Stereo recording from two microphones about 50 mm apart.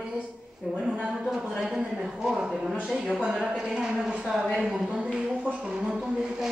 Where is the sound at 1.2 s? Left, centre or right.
Centre.